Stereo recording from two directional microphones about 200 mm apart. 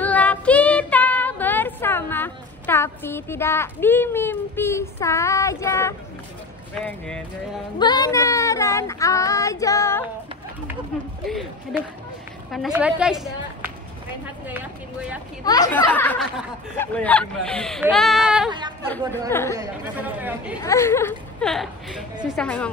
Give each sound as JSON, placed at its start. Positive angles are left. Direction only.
{"t": 0.0, "sound": "child singing", "side_deg": 5}
{"t": 7.1, "sound": "speech", "side_deg": 5}
{"t": 7.8, "sound": "speech", "side_deg": 20}
{"t": 11.2, "sound": "speech", "side_deg": 0}
{"t": 14.5, "sound": "speech", "side_deg": -5}
{"t": 15.4, "sound": "speech", "side_deg": 20}
{"t": 15.9, "sound": "speech", "side_deg": 10}
{"t": 19.5, "sound": "speech", "side_deg": -10}
{"t": 20.6, "sound": "speech", "side_deg": 15}